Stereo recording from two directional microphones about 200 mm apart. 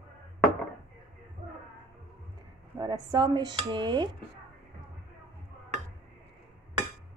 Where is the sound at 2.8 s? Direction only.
20° right (ahead or behind).